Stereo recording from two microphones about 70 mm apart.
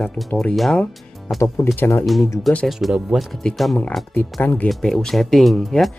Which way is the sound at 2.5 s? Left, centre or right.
Centre.